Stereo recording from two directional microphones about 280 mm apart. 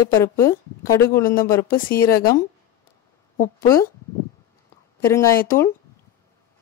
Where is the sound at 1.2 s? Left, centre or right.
Left.